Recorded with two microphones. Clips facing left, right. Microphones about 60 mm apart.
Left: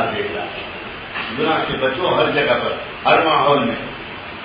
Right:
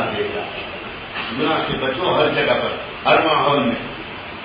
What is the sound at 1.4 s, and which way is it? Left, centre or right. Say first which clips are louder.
Speech: left 1 dB; left.